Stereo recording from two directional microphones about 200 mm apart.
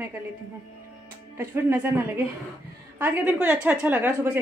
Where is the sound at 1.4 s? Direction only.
10° right (ahead or behind).